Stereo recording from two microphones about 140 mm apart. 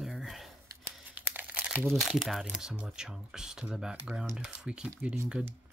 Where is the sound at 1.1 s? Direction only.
10° right (ahead or behind).